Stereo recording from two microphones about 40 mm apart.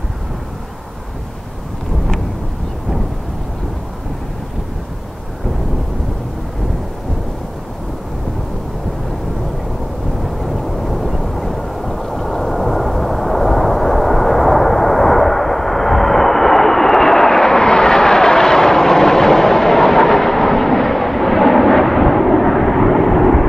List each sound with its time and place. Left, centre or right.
10.2 s vehicle: centre